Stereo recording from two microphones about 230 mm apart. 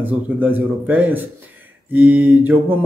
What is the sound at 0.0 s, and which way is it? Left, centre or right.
A man's voice, centre.